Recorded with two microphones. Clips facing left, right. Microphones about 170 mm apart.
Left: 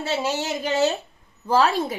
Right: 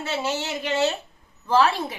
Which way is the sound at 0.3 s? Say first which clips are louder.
Left 2 dB; 40° left (ahead or behind).